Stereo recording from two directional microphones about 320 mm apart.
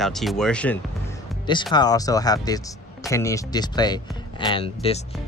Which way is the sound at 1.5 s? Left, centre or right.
Centre.